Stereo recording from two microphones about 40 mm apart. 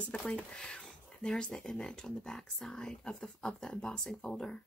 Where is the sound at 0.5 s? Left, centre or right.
Left.